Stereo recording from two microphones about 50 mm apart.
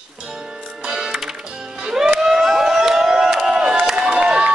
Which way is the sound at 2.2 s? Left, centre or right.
Centre.